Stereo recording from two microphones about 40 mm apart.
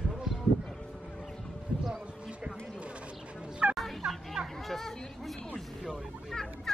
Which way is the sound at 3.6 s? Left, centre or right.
Right.